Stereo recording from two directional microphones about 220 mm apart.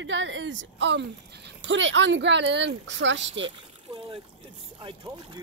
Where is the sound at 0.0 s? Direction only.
60° right (ahead or behind).